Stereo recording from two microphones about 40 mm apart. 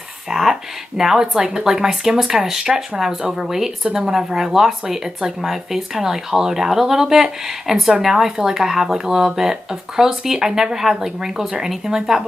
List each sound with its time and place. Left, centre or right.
0.3 s speech: centre